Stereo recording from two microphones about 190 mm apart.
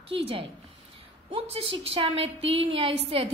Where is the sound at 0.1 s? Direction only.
30° right (ahead or behind).